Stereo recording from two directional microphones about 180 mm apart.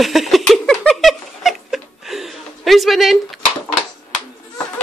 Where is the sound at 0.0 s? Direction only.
Centre (ahead or behind).